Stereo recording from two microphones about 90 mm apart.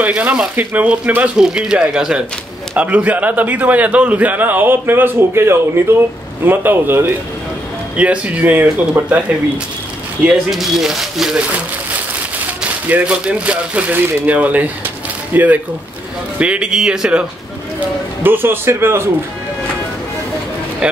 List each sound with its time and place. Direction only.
0.0 s a man's voice: 15° right (ahead or behind)
7.9 s speech: 15° right (ahead or behind)
10.2 s speech: 5° right (ahead or behind)
12.6 s a man's voice: 15° right (ahead or behind)
17.7 s a man's voice: 20° right (ahead or behind)
20.8 s speech: 10° right (ahead or behind)